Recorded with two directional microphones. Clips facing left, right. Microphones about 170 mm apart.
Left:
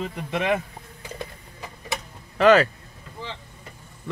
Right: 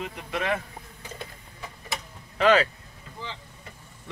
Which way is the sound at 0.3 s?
20° left (ahead or behind).